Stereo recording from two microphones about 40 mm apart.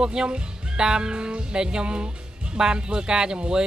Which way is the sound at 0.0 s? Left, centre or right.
Centre.